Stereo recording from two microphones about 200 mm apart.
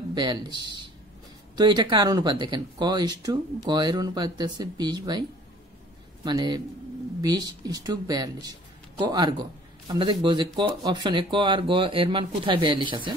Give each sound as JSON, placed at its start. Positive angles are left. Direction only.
{"t": 0.1, "sound": "speech", "side_deg": -20}
{"t": 6.2, "sound": "speech", "side_deg": -20}